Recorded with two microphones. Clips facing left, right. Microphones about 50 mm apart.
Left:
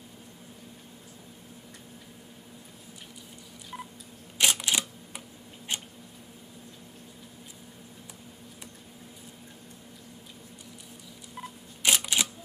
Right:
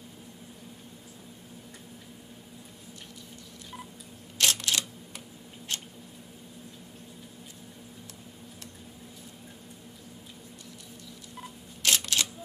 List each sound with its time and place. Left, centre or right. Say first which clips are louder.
3.7 s telephone dialing: left 3 dB; centre
4.4 s typewriter: left 1 dB; centre
5.7 s a sound: left 2 dB; centre
11.8 s camera: left 1 dB; centre